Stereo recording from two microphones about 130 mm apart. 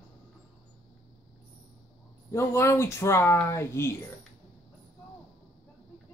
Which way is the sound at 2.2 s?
20° left (ahead or behind).